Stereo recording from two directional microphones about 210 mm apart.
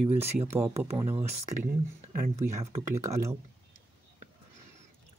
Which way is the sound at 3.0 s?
15° right (ahead or behind).